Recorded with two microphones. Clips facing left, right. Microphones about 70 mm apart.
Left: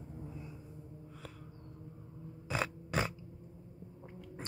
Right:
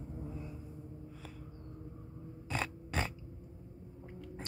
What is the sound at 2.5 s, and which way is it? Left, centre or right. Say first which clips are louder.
Mechanisms: left 2 dB; centre.